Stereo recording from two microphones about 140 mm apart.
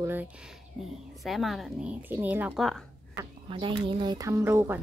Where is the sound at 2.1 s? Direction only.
15° right (ahead or behind).